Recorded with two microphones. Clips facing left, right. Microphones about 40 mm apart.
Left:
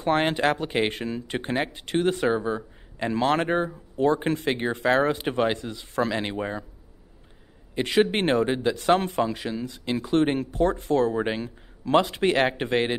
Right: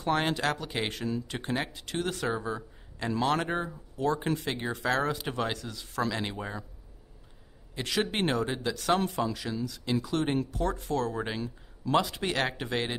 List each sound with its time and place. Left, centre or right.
0.0 s speech: left
7.7 s speech: left